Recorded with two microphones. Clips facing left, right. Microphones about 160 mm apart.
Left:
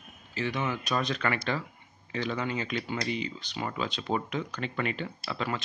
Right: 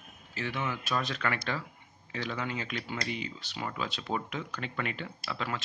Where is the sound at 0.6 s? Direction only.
Centre (ahead or behind).